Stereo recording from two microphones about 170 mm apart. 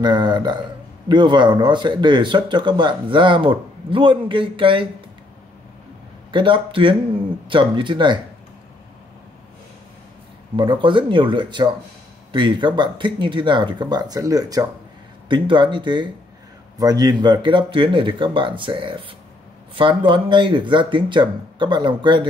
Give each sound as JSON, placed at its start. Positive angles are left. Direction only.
{"t": 0.0, "sound": "a man's voice", "side_deg": -25}
{"t": 6.3, "sound": "a man's voice", "side_deg": -30}
{"t": 10.5, "sound": "a man's voice", "side_deg": -30}